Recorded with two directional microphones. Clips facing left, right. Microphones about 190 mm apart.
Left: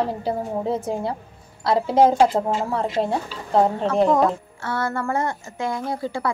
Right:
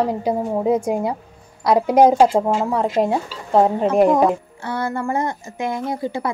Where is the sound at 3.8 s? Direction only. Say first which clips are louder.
Right 3 dB; 15° right (ahead or behind).